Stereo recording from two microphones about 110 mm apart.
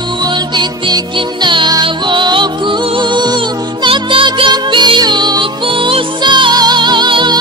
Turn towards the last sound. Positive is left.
turn(degrees=-45)  # may be behind; listen again after turning